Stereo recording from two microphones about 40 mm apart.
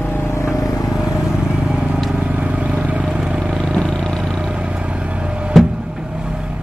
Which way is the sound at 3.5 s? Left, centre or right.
Centre.